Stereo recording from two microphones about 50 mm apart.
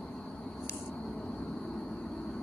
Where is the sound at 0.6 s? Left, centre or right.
Left.